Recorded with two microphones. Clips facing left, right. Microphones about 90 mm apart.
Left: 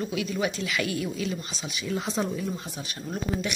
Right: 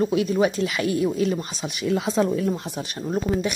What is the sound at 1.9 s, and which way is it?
Speech, 90° right.